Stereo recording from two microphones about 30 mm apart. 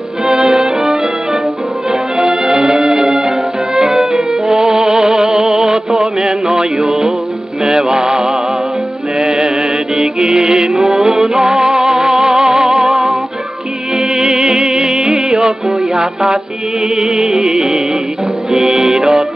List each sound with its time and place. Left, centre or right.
0.2 s music: centre
1.9 s music: right
4.6 s music: right
7.9 s mantra: right
9.2 s music: right
9.6 s mantra: centre
10.7 s music: centre